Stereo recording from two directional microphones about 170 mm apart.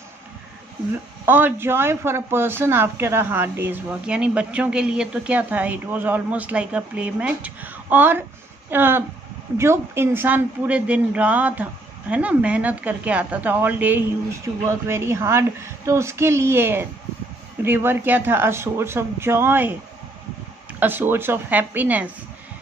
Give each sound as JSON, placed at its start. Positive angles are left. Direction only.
{"t": 1.2, "sound": "a woman's voice", "side_deg": -10}
{"t": 20.8, "sound": "a woman's voice", "side_deg": -10}